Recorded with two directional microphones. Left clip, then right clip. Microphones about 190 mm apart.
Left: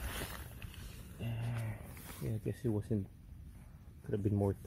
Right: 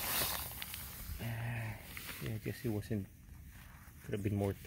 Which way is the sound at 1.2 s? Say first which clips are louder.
Right 2 dB; centre (ahead or behind).